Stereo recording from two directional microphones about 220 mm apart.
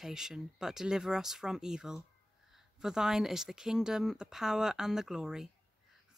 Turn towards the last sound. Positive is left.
turn(degrees=0)  # may be behind; listen again after turning